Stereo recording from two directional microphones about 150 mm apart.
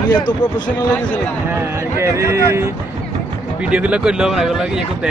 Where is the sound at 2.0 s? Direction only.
15° right (ahead or behind).